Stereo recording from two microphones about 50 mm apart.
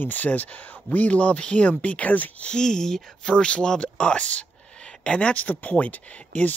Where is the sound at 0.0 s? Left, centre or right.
Left.